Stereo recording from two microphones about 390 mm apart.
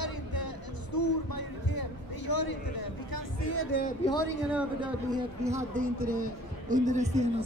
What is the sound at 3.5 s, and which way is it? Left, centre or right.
Speech, left.